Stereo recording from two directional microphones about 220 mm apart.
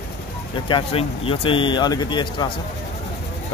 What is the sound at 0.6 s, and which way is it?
Speech, 25° left (ahead or behind).